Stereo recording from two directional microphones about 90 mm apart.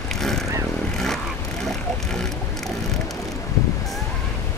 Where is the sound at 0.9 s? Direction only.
5° left (ahead or behind).